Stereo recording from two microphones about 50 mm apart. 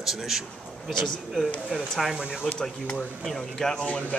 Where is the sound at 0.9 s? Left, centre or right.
Centre.